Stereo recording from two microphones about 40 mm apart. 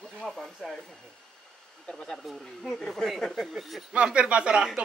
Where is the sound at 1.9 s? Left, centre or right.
Centre.